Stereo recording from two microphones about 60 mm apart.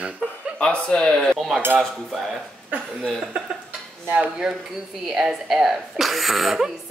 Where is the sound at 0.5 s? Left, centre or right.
Centre.